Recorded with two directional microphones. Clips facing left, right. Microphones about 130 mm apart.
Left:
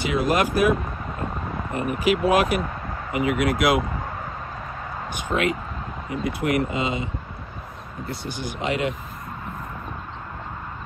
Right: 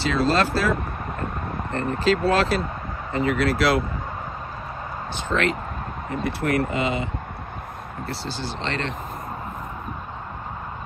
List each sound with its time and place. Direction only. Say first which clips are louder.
0.0 s speech: right 1 dB; 15° left (ahead or behind)
5.1 s speech: even; 15° left (ahead or behind)